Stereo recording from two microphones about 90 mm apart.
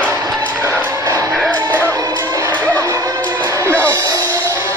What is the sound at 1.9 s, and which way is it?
Music, 35° right (ahead or behind).